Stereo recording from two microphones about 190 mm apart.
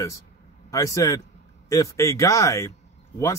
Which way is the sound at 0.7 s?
15° left (ahead or behind).